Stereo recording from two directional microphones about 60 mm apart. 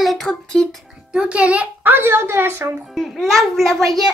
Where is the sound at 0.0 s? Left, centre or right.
Centre.